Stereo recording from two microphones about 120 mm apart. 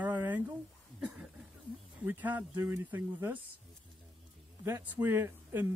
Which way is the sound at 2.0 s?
15° right (ahead or behind).